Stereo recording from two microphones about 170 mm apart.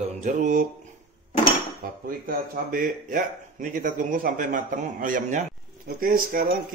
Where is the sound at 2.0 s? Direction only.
55° right (ahead or behind).